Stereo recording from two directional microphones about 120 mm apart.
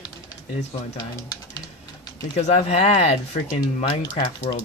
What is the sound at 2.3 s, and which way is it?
Speech, 70° left (ahead or behind).